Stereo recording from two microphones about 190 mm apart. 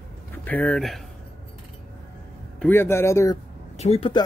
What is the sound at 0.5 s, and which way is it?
Speech, 5° left (ahead or behind).